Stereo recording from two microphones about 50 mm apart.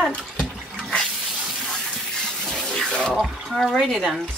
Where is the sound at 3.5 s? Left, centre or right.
Centre.